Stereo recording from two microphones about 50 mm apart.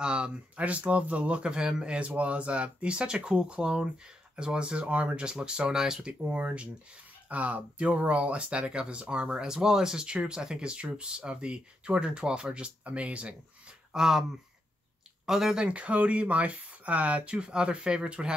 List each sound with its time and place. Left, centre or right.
0.0 s speech: centre
6.2 s speech: right
13.9 s speech: centre
15.2 s speech: centre
15.6 s speech: right